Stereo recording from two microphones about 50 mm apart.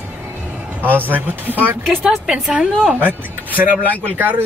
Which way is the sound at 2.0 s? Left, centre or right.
Centre.